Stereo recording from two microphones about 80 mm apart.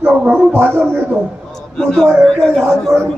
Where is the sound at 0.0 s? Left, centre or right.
Centre.